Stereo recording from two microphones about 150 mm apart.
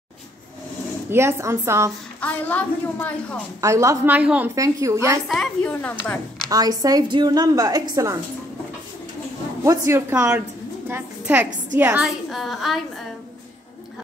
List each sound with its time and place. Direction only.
1.1 s a woman's voice: 20° right (ahead or behind)
2.1 s a woman's voice: 10° left (ahead or behind)
3.6 s a woman's voice: 20° right (ahead or behind)
4.6 s a woman's voice: 20° right (ahead or behind)
5.3 s a woman's voice: 5° left (ahead or behind)
6.5 s a woman's voice: 25° right (ahead or behind)
9.7 s a woman's voice: 20° right (ahead or behind); by 12.8 s centre (ahead or behind)